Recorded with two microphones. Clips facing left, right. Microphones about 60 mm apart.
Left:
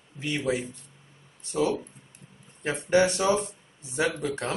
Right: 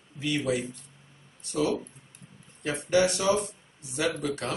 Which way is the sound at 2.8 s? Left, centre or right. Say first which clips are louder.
Left 2 dB; left.